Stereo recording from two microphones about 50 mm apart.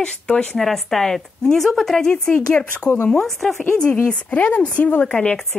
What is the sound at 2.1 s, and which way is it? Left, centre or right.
Speech, centre.